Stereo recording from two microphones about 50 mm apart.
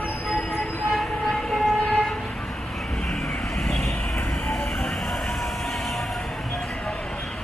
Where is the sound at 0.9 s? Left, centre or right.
Centre.